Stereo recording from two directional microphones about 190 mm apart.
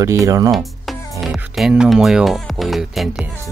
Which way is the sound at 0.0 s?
15° right (ahead or behind).